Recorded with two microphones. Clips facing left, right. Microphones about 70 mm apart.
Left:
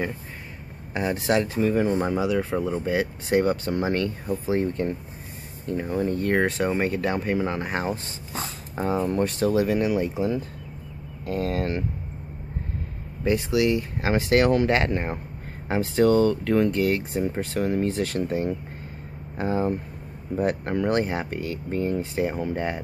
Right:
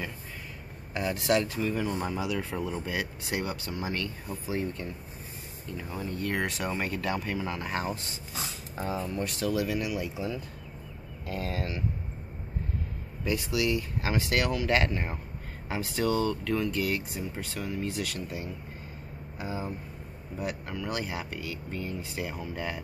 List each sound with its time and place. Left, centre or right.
0.9 s speech: left
13.2 s speech: left